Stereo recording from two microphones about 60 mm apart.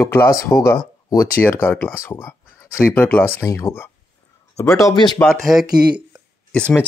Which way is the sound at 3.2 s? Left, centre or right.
Left.